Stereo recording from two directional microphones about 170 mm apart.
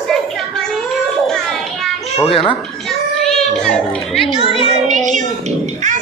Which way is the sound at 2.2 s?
35° left (ahead or behind).